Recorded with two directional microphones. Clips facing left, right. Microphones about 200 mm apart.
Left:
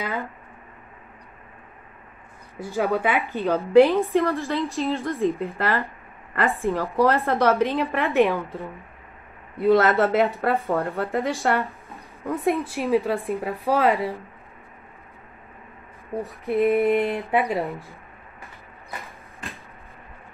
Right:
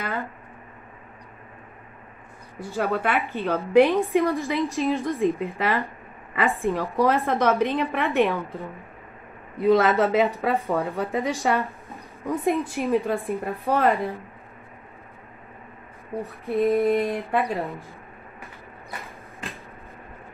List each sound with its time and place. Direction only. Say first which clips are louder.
0.0 s speech: left 1 dB; centre (ahead or behind)
2.8 s speech: left 2 dB; centre (ahead or behind)
4.4 s a woman's voice: right 1 dB; 15° right (ahead or behind)
4.7 s speech: right 1 dB; centre (ahead or behind)
16.6 s a sound: left 1 dB; 15° left (ahead or behind)
17.2 s speech: left 2 dB; centre (ahead or behind)
18.9 s a sound: even; centre (ahead or behind)